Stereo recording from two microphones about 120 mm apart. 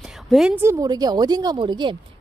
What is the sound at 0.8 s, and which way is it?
Speech, 35° right (ahead or behind).